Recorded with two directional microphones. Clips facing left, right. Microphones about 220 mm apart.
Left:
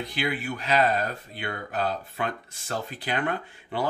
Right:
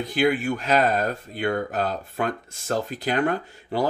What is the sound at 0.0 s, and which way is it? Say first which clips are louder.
Speech: right 8 dB; 45° right (ahead or behind).